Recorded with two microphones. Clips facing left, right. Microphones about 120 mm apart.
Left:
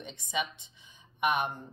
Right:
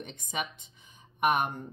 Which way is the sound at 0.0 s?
45° right (ahead or behind).